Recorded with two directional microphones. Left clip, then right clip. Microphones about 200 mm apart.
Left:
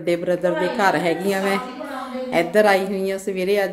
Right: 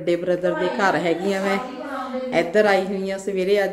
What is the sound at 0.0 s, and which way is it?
A woman's voice, 20° left (ahead or behind).